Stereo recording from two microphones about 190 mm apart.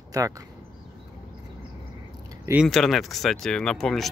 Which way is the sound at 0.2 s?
20° right (ahead or behind).